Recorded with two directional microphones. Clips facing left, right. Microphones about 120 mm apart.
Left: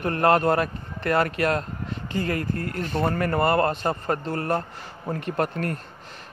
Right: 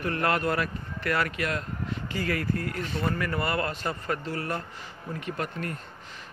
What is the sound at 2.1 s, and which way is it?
Speech, 25° left (ahead or behind).